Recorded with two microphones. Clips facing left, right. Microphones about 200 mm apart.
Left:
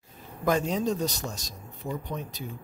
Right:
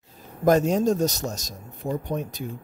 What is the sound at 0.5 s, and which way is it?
Speech, 45° right (ahead or behind).